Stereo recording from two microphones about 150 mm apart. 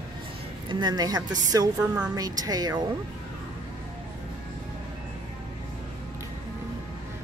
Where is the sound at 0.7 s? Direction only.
30° right (ahead or behind).